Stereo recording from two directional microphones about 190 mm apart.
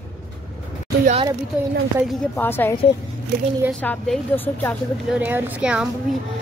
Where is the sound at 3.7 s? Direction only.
5° left (ahead or behind).